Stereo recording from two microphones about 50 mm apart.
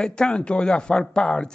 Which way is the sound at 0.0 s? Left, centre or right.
Centre.